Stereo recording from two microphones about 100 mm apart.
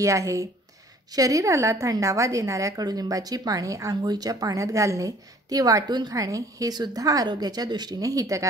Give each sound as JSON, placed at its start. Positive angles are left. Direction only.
{"t": 0.0, "sound": "a woman's voice", "side_deg": -30}